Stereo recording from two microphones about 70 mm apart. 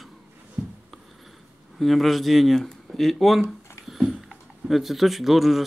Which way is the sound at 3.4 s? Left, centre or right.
Left.